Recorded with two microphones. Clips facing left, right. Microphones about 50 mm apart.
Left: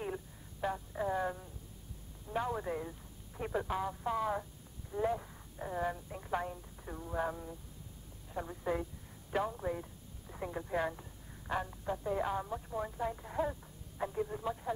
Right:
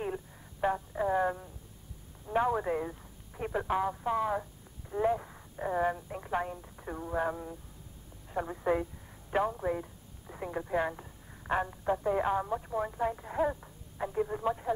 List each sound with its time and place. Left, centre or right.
0.6 s a sound: right
2.2 s radio: right
3.3 s speech: centre
3.6 s a woman's voice: right
13.9 s radio: centre
14.2 s speech: right